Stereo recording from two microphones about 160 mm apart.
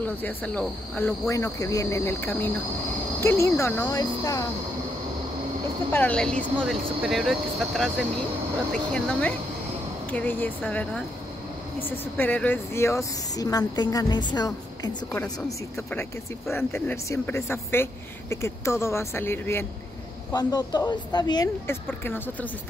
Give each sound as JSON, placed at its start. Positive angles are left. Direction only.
{"t": 0.0, "sound": "cricket", "side_deg": 10}
{"t": 5.9, "sound": "speech", "side_deg": 10}
{"t": 8.9, "sound": "cricket", "side_deg": 5}
{"t": 12.0, "sound": "speech", "side_deg": 10}
{"t": 15.9, "sound": "cricket", "side_deg": 10}
{"t": 20.3, "sound": "speech", "side_deg": 25}
{"t": 21.6, "sound": "cricket", "side_deg": 15}